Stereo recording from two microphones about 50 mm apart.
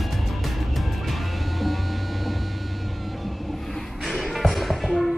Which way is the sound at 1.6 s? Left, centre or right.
Centre.